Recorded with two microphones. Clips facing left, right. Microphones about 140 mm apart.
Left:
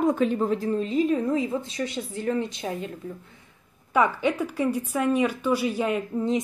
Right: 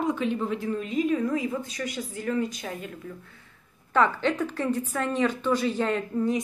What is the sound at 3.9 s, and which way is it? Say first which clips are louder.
Speech: left 1 dB; 10° left (ahead or behind).